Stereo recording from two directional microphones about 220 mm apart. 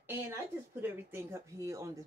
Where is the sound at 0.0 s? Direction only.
10° right (ahead or behind).